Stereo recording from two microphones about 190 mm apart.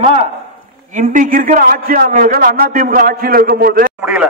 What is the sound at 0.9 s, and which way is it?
A man's voice, 40° right (ahead or behind).